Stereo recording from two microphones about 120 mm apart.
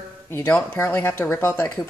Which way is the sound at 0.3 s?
20° left (ahead or behind).